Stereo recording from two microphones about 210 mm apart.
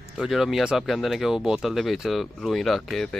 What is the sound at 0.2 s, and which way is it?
Speech, centre (ahead or behind).